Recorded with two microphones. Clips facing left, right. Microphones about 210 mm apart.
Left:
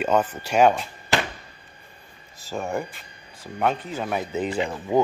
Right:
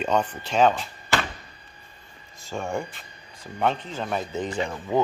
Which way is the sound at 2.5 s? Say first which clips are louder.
Left 1 dB; centre (ahead or behind).